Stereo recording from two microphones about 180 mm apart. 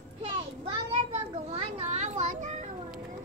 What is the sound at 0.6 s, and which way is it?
Children playing, 30° right (ahead or behind).